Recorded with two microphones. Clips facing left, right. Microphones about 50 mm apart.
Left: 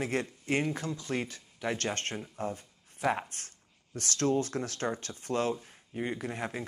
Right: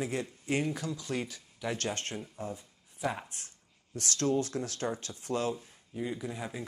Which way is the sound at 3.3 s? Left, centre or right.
Left.